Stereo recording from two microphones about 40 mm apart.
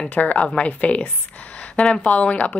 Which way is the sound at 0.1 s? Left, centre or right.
Left.